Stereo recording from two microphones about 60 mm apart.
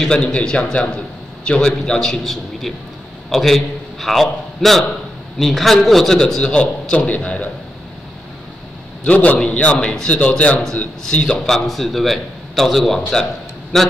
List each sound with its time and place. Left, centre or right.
0.0 s a man's voice: centre
9.0 s a man's voice: left